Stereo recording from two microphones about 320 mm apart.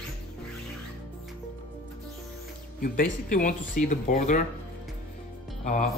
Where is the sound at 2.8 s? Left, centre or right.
Left.